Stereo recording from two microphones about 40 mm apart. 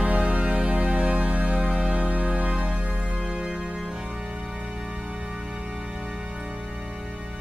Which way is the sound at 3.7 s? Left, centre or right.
Centre.